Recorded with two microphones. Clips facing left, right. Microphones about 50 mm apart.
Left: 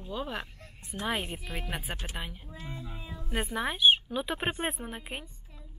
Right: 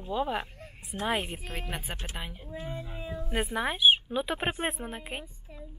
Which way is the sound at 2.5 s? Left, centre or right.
Right.